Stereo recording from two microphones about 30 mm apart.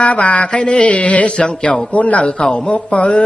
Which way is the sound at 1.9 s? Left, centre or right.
Left.